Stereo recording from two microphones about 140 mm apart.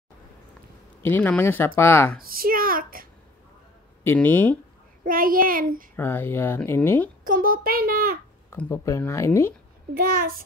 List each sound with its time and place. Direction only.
1.0 s speech: 10° left (ahead or behind)
2.1 s a child's voice: 90° right
4.0 s speech: 15° left (ahead or behind)
5.0 s a child's voice: 90° right
5.9 s speech: 15° left (ahead or behind)
7.2 s a child's voice: 90° right
8.5 s speech: 15° left (ahead or behind)
9.9 s a child's voice: 90° right